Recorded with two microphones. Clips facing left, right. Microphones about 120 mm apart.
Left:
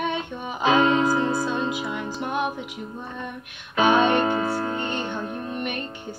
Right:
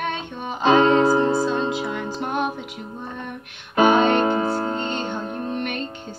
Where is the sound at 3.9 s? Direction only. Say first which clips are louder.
Right 2 dB; 20° right (ahead or behind).